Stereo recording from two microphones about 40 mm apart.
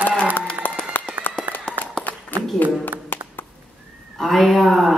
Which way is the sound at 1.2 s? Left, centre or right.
Left.